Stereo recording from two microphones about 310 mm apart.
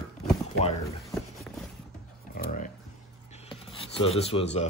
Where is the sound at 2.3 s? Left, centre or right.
Left.